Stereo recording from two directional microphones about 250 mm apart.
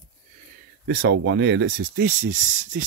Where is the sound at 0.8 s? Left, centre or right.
Right.